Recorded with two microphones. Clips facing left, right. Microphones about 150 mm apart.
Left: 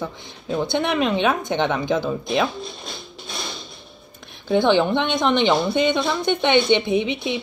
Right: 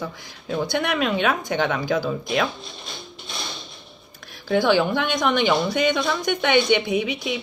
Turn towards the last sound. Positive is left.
turn(degrees=25)  # may be behind; listen again after turning